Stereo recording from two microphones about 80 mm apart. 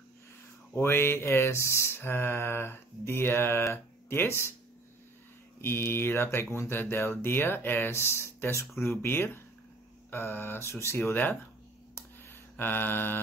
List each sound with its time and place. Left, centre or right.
0.7 s mantra: left
5.6 s mantra: left
9.0 s speech: left
10.1 s mantra: left
11.9 s a sound: left